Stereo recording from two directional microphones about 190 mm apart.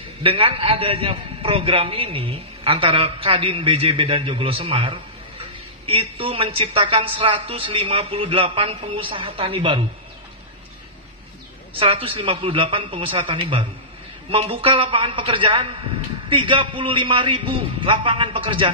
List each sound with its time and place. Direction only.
0.2 s a man's voice: 30° right (ahead or behind)
11.8 s a man's voice: 30° right (ahead or behind)